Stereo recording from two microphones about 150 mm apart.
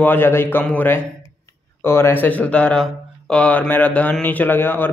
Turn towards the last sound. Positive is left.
turn(degrees=15)  # may be behind; listen again after turning